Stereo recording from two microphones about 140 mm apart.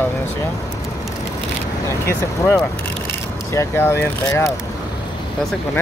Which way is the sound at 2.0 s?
20° left (ahead or behind).